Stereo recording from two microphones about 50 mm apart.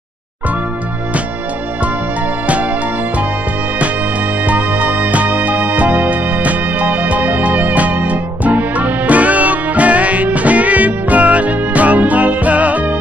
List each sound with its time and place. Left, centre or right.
4.5 s music: right